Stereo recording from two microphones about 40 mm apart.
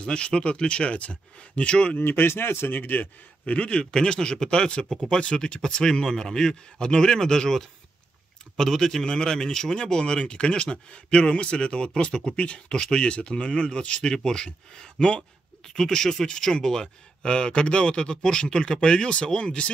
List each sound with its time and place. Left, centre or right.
0.0 s a man's voice: left
2.0 s speech: left
2.7 s a man's voice: left
3.5 s a man's voice: left
15.7 s a man's voice: centre